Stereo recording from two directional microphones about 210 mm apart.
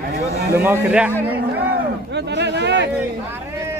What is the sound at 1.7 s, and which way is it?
Speech, 55° right (ahead or behind).